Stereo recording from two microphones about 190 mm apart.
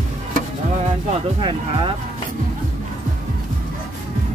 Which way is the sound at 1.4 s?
25° right (ahead or behind).